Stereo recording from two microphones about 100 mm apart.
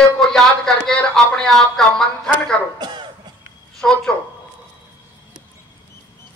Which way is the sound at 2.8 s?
50° right (ahead or behind).